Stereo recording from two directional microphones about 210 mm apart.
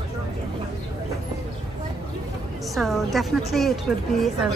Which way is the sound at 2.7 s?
Centre (ahead or behind).